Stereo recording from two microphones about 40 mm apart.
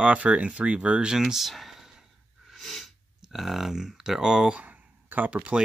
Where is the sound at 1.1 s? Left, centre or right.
Centre.